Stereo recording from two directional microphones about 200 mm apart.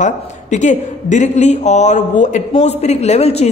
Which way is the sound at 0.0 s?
35° left (ahead or behind).